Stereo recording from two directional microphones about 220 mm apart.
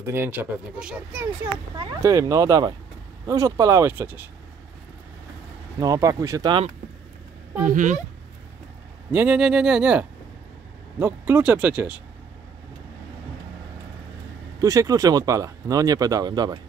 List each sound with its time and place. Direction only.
0.0 s speech: 10° right (ahead or behind)
5.8 s speech: 15° right (ahead or behind)
7.6 s speech: 35° right (ahead or behind)
9.1 s speech: 5° right (ahead or behind)
14.6 s speech: 15° right (ahead or behind)